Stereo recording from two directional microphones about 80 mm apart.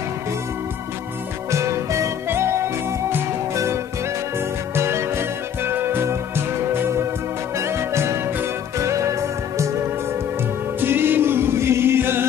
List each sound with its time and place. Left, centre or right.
1.5 s music: right
10.8 s music: right